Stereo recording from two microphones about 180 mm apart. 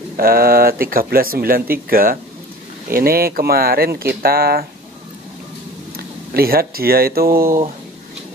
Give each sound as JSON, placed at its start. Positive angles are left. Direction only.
{"t": 0.2, "sound": "speech", "side_deg": -55}
{"t": 5.9, "sound": "speech", "side_deg": -55}